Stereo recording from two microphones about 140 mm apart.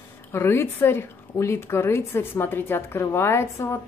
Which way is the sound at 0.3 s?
15° left (ahead or behind).